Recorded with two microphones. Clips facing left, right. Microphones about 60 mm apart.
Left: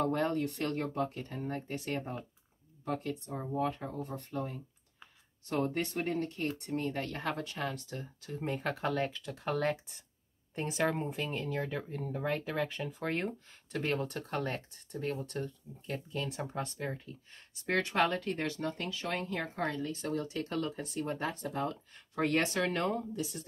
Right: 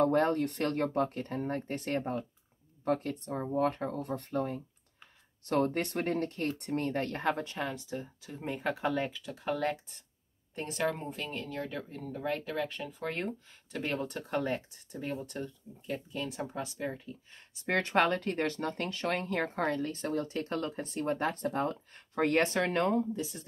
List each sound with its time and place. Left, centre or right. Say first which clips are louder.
0.0 s speech: right 4 dB; right
7.0 s speech: right 4 dB; right
7.5 s speech: right 2 dB; centre
12.4 s speech: even; centre
17.6 s speech: right 2 dB; right